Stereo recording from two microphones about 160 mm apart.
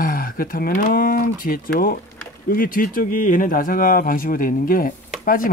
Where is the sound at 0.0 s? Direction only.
60° left (ahead or behind).